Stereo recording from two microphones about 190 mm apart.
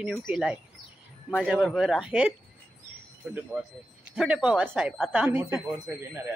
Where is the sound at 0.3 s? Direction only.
5° right (ahead or behind).